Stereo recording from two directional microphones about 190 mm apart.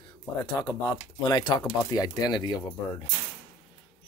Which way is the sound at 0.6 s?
20° left (ahead or behind).